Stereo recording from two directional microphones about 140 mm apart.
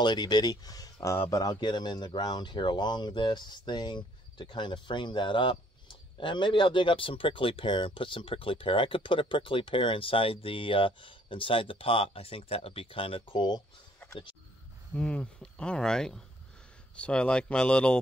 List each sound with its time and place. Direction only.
0.0 s speech: 30° left (ahead or behind)
15.0 s speech: 10° left (ahead or behind)